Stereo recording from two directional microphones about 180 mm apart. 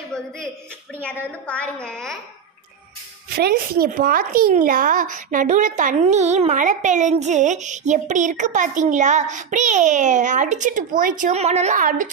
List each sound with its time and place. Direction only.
1.0 s a woman's voice: 5° left (ahead or behind)
3.3 s a child's voice: 60° right (ahead or behind)